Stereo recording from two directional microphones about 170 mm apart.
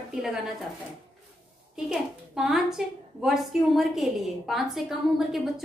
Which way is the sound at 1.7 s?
5° right (ahead or behind).